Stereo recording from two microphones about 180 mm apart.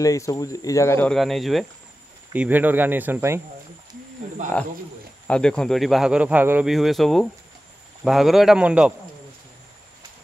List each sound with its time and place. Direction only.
0.0 s speech: 20° left (ahead or behind)
1.1 s speech: centre (ahead or behind)
5.2 s speech: 5° left (ahead or behind)